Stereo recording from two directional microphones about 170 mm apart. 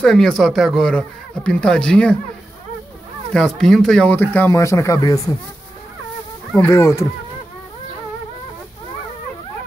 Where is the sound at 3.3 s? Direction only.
5° left (ahead or behind); by 5.2 s 20° left (ahead or behind).